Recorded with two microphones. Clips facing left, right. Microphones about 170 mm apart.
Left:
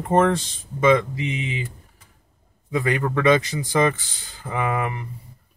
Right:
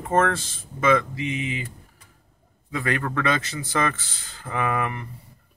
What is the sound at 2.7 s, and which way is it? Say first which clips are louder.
Speech: left 4 dB; 15° left (ahead or behind).